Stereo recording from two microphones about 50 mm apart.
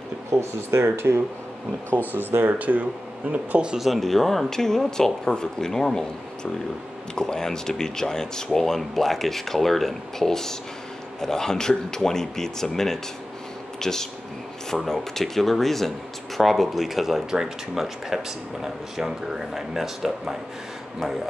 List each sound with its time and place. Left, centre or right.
0.3 s speech: right
2.1 s speech: right
3.8 s speech: centre